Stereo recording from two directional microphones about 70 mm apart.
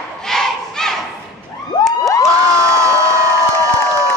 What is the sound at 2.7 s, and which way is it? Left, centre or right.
Crowd, right.